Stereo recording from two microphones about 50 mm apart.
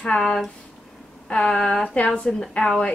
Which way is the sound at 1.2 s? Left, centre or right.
Centre.